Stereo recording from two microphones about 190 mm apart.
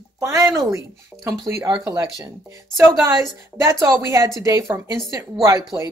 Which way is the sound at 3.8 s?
15° right (ahead or behind).